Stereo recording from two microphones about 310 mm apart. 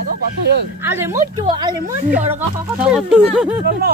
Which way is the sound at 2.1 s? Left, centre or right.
Right.